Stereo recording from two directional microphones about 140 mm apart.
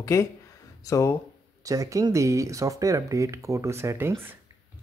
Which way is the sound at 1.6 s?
25° right (ahead or behind).